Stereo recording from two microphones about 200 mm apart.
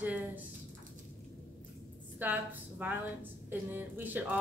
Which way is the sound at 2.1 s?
10° right (ahead or behind).